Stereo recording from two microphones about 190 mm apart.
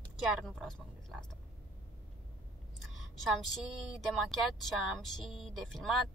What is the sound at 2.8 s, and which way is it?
A woman's voice, centre (ahead or behind).